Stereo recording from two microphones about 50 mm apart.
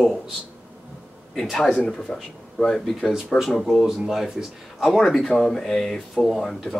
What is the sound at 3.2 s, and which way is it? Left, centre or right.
Speech, centre.